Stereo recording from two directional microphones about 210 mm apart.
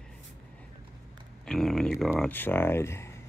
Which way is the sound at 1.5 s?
Centre (ahead or behind).